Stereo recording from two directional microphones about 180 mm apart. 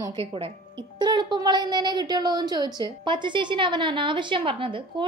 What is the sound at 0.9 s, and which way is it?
A woman's voice, 25° right (ahead or behind).